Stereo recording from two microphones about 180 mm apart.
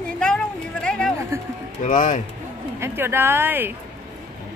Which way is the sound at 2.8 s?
15° right (ahead or behind).